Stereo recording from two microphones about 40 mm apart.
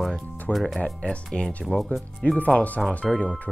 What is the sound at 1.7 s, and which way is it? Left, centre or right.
Speech, centre.